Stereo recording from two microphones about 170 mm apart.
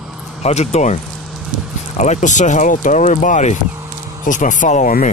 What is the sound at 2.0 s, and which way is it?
Speech, 45° left (ahead or behind).